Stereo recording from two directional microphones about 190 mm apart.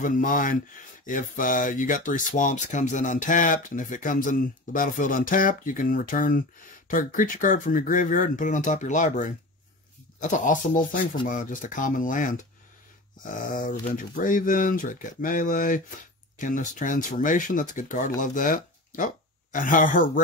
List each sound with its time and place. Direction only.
0.0 s speech: 45° left (ahead or behind)